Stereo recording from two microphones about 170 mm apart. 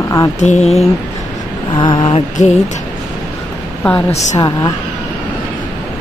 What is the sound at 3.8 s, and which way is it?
Speech, 10° left (ahead or behind).